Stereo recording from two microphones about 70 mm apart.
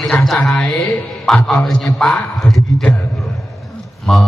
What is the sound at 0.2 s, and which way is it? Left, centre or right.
Mantra, centre.